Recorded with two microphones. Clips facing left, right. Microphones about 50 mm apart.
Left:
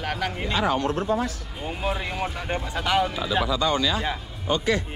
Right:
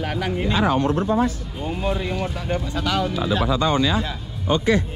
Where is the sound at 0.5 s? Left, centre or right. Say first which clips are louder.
Right 3 dB; right.